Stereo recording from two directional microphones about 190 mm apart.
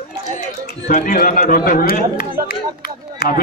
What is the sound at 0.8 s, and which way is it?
A man's voice, 45° left (ahead or behind).